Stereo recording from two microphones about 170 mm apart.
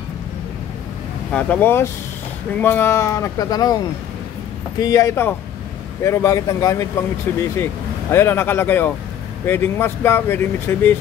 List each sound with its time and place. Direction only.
1.3 s speech: 10° left (ahead or behind)